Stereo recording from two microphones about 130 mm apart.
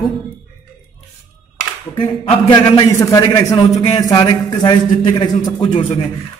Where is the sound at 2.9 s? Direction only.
25° left (ahead or behind).